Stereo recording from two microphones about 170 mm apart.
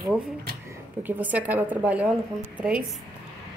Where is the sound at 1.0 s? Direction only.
10° right (ahead or behind).